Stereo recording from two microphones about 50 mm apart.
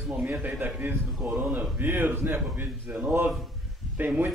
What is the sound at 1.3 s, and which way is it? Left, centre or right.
Speech, right.